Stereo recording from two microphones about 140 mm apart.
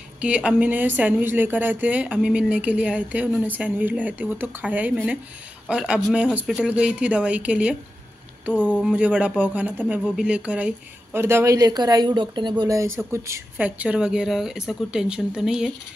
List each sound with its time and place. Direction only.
0.2 s a woman's voice: 10° right (ahead or behind)